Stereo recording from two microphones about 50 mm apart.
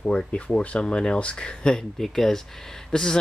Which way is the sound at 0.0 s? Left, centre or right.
Left.